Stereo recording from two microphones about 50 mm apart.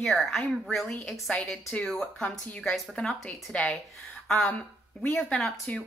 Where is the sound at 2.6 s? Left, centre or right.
Centre.